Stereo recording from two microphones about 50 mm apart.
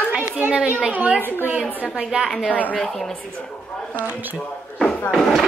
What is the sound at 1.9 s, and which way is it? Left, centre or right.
Speech, centre.